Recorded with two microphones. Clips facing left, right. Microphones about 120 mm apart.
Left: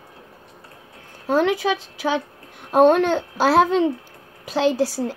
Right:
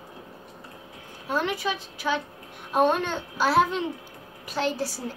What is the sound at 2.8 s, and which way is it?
A child's voice, 75° left (ahead or behind).